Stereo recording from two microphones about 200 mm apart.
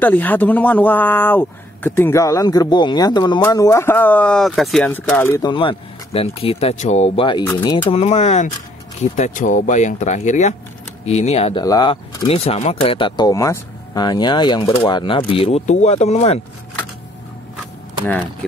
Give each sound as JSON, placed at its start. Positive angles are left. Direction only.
{"t": 0.0, "sound": "speech", "side_deg": 10}
{"t": 5.5, "sound": "speech", "side_deg": 25}
{"t": 11.6, "sound": "speech", "side_deg": 20}